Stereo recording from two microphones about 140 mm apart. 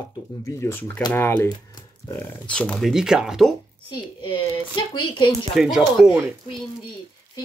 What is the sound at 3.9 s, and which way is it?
Speech, 40° left (ahead or behind).